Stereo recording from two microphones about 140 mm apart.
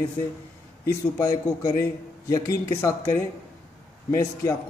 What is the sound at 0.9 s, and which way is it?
A man's voice, 25° left (ahead or behind).